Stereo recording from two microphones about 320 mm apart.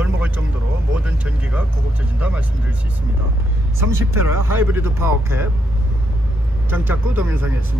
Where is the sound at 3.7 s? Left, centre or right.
Centre.